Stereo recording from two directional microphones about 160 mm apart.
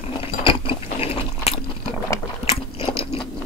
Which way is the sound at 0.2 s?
35° left (ahead or behind).